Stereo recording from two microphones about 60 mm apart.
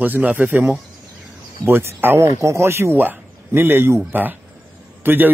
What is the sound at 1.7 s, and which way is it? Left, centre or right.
Speech, right.